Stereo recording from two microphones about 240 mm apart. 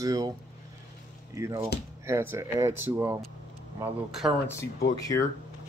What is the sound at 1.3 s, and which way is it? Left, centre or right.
Speech, centre.